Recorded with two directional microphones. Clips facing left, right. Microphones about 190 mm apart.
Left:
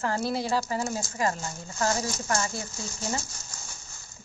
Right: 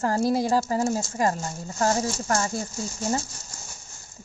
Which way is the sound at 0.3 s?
45° right (ahead or behind).